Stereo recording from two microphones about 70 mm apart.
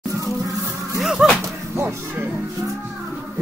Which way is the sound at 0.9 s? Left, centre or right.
Centre.